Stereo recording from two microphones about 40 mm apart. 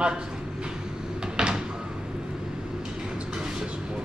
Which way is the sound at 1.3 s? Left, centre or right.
Centre.